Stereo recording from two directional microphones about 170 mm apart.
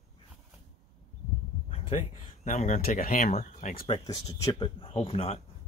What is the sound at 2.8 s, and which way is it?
Speech, 55° left (ahead or behind).